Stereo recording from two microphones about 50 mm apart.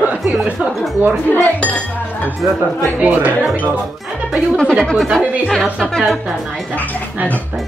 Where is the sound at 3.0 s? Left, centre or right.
Right.